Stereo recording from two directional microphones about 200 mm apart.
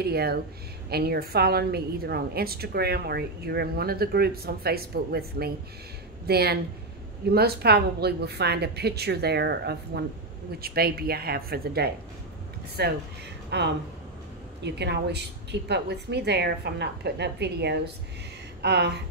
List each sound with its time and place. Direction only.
0.0 s a woman's voice: 50° right (ahead or behind)